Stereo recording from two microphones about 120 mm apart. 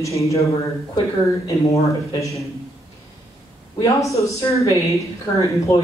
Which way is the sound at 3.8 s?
25° left (ahead or behind).